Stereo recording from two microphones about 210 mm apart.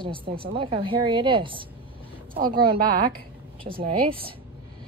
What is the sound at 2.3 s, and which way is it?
Speech, 45° right (ahead or behind).